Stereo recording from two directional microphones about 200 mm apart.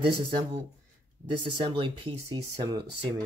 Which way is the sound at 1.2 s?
25° right (ahead or behind).